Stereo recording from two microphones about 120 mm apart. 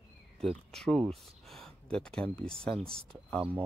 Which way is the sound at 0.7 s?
5° left (ahead or behind).